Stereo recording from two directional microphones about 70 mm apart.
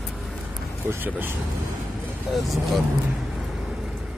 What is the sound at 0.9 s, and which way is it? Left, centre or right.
Speech, right.